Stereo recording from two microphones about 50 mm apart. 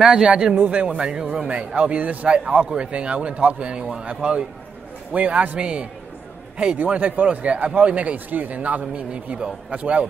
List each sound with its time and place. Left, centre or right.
0.0 s a man's voice: centre
0.3 s a man's voice: right
6.8 s speech: right